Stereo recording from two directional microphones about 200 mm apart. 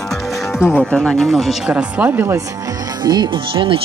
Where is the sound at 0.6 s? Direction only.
5° right (ahead or behind).